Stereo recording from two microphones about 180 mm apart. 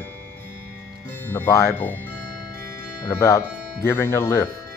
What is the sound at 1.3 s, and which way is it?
Speech, 15° left (ahead or behind).